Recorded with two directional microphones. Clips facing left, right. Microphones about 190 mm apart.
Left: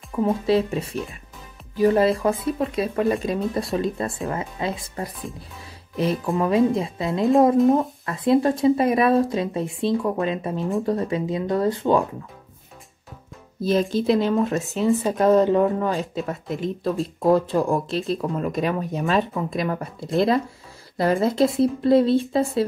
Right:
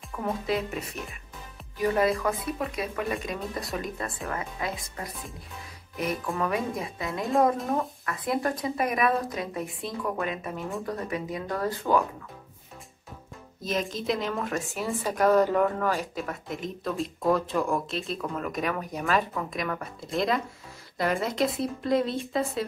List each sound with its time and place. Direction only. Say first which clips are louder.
0.1 s a woman's voice: left 9 dB; 25° left (ahead or behind)
6.2 s a woman's voice: left 12 dB; 20° left (ahead or behind)
13.6 s a woman's voice: left 9 dB; 35° left (ahead or behind)